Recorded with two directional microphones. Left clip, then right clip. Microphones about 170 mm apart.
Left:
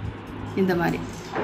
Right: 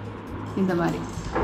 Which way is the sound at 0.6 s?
15° left (ahead or behind).